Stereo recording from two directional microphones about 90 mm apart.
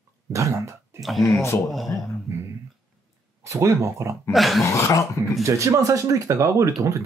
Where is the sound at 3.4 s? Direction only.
35° right (ahead or behind).